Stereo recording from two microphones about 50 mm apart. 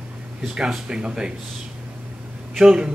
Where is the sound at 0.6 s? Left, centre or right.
Centre.